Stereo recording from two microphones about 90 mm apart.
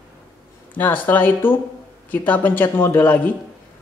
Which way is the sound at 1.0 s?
20° left (ahead or behind).